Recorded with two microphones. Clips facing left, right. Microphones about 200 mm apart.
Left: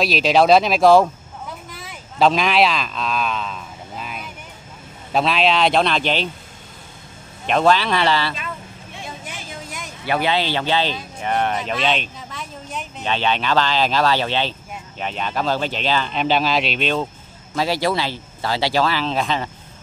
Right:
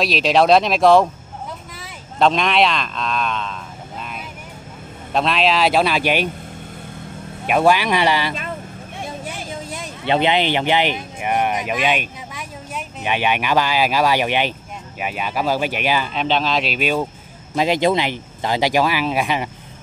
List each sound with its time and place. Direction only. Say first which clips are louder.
0.0 s speech: even; centre (ahead or behind)
4.0 s vehicle: even; centre (ahead or behind)
5.1 s speech: even; centre (ahead or behind)
7.4 s speech: right 1 dB; 10° right (ahead or behind)
9.2 s speech: right 5 dB; 30° right (ahead or behind); by 16.1 s 10° right (ahead or behind)
16.1 s speech: left 1 dB; centre (ahead or behind)
17.6 s speech: right 3 dB; 20° right (ahead or behind)